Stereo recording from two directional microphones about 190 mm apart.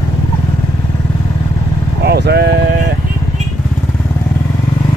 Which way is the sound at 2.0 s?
60° right (ahead or behind).